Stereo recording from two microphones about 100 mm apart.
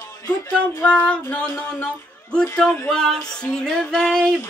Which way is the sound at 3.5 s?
5° left (ahead or behind).